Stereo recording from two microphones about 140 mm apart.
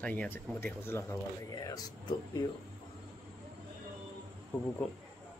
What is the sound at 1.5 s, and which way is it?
Speech, 30° left (ahead or behind).